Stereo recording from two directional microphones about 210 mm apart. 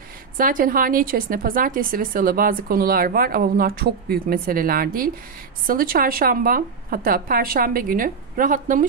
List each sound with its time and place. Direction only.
0.4 s speech: 40° right (ahead or behind)